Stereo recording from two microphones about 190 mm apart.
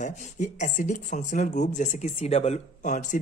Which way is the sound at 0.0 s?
40° left (ahead or behind).